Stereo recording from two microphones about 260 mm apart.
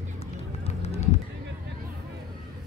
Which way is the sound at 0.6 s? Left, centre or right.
Left.